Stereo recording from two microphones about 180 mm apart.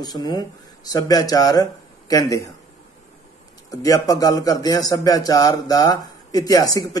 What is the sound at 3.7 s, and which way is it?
Speech, 20° left (ahead or behind).